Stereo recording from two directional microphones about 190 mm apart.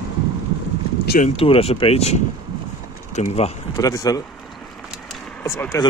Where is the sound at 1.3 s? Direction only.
30° left (ahead or behind).